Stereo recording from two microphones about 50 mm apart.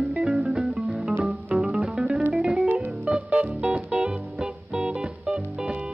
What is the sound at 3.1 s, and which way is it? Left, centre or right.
Music, right.